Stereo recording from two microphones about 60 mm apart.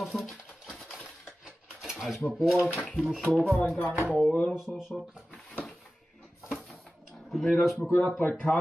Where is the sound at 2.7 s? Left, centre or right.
Centre.